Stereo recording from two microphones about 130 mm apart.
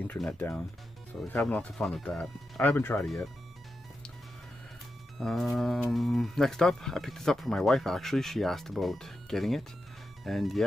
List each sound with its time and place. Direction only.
0.3 s speech: 15° left (ahead or behind)
5.2 s speech: centre (ahead or behind)